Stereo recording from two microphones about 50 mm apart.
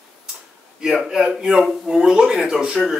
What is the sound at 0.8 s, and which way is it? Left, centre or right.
A man's voice, centre.